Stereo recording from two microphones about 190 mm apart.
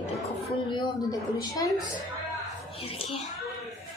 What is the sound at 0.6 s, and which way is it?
A woman's voice, 25° left (ahead or behind).